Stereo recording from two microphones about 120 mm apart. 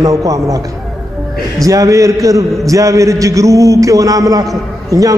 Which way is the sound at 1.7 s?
25° right (ahead or behind).